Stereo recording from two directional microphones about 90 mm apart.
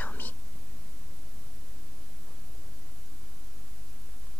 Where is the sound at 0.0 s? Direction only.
20° left (ahead or behind).